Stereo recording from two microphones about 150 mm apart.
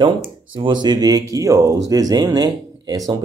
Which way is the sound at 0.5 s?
30° right (ahead or behind).